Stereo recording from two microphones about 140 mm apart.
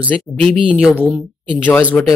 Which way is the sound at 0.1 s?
5° left (ahead or behind).